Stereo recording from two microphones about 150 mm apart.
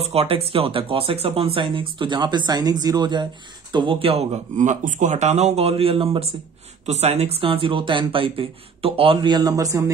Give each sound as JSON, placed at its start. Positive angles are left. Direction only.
{"t": 0.0, "sound": "speech", "side_deg": -40}